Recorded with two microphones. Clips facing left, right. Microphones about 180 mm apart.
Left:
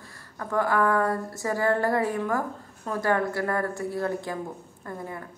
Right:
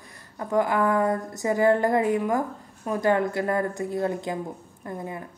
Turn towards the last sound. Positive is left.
turn(degrees=-20)  # may be behind; listen again after turning